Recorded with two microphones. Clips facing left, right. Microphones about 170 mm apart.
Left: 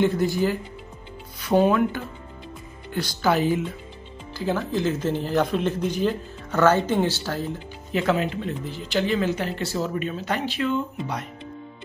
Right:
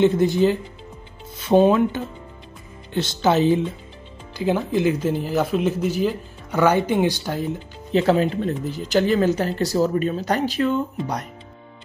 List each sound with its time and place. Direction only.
0.0 s speech: 20° right (ahead or behind)
7.9 s speech: 30° right (ahead or behind)